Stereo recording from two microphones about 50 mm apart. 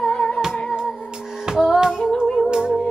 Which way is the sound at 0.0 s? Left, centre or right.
Centre.